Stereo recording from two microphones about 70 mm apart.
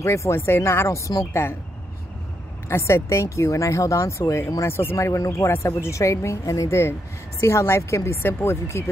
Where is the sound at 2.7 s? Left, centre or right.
Left.